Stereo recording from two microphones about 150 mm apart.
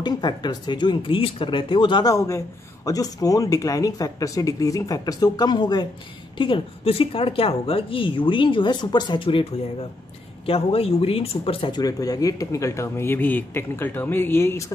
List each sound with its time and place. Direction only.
0.0 s a woman's voice: 30° left (ahead or behind)
11.8 s speech: 25° left (ahead or behind)